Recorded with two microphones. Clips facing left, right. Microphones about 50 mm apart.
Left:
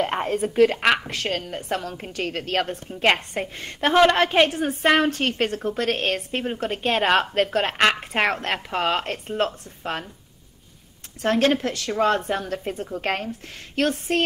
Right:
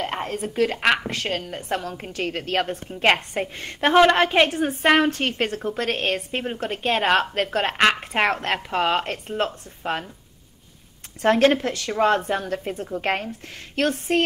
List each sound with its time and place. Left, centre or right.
0.0 s a sound: centre
0.5 s a woman's voice: centre
11.1 s speech: right
11.5 s a woman's voice: centre